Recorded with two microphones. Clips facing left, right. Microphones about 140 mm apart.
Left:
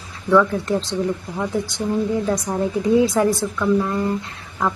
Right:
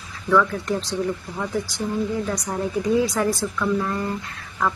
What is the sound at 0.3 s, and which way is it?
Speech, 25° left (ahead or behind).